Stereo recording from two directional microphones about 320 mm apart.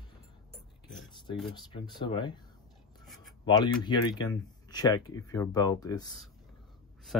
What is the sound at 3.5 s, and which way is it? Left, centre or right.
Speech, centre.